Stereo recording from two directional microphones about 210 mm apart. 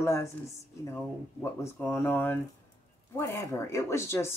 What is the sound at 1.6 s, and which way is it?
Speech, 10° left (ahead or behind).